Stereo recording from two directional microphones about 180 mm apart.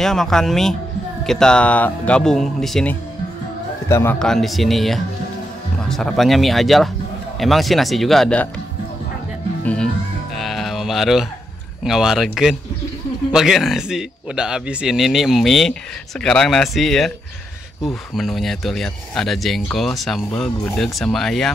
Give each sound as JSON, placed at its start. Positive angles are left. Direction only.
{"t": 0.0, "sound": "a man's voice", "side_deg": 0}
{"t": 4.2, "sound": "speech", "side_deg": 0}
{"t": 10.3, "sound": "music", "side_deg": 0}
{"t": 11.8, "sound": "speech", "side_deg": 0}